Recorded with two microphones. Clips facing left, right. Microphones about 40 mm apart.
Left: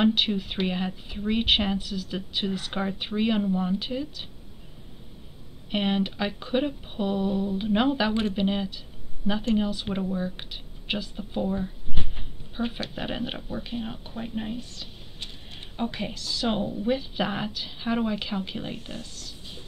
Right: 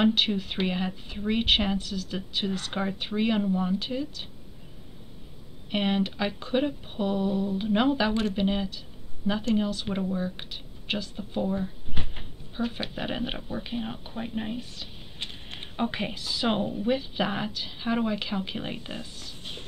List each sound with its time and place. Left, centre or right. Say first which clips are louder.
0.0 s speech: left 1 dB; centre
5.7 s speech: left 1 dB; centre
15.6 s a woman's voice: right 1 dB; right
16.8 s speech: left 1 dB; centre
18.7 s a woman's voice: right 1 dB; right